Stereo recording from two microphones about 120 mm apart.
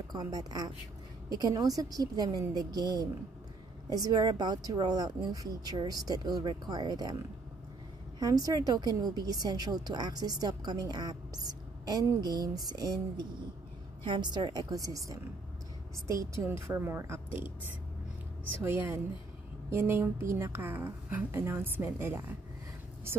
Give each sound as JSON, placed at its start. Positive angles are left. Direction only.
{"t": 0.1, "sound": "a woman's voice", "side_deg": -30}
{"t": 8.2, "sound": "a woman's voice", "side_deg": -30}
{"t": 18.6, "sound": "a woman's voice", "side_deg": -20}